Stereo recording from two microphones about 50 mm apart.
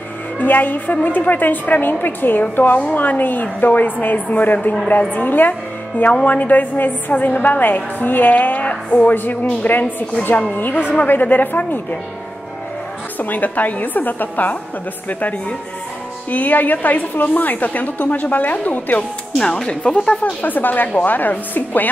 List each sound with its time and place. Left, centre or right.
0.4 s a woman's voice: left
13.2 s a woman's voice: left
19.4 s speech: centre
20.4 s a woman's voice: left